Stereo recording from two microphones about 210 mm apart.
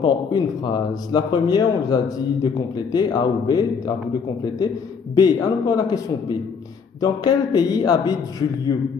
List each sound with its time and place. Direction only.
0.0 s speech: 20° left (ahead or behind)
5.1 s a man's voice: 20° left (ahead or behind)